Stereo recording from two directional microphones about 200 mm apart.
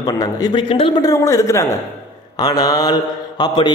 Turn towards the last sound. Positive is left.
turn(degrees=20)  # may be behind; listen again after turning